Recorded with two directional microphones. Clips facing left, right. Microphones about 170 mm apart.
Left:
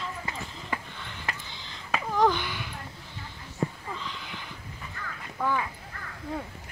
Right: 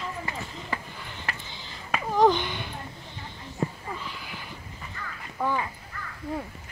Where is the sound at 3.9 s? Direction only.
10° right (ahead or behind).